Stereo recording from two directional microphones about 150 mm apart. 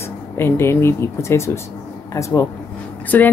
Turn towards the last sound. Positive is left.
turn(degrees=15)  # may be behind; listen again after turning